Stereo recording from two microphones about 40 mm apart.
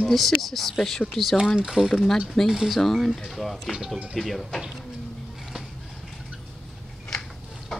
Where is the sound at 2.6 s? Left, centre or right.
Centre.